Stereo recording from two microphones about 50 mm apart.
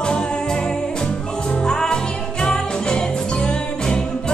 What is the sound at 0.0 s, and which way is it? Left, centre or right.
Music, centre.